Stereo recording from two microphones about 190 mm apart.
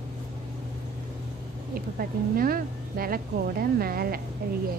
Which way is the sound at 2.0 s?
50° right (ahead or behind).